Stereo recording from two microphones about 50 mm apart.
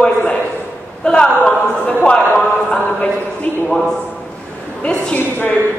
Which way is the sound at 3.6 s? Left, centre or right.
Centre.